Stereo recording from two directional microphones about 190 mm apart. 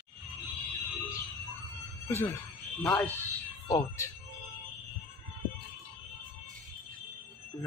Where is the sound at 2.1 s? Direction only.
15° left (ahead or behind).